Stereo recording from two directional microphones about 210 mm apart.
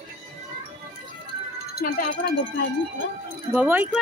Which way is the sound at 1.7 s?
45° left (ahead or behind).